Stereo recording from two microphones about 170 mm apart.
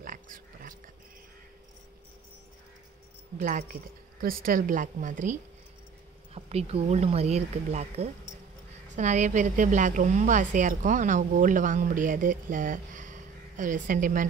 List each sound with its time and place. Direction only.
0.0 s a sound: 55° right (ahead or behind)
3.3 s a woman's voice: 50° right (ahead or behind)
6.3 s a woman's voice: 35° right (ahead or behind)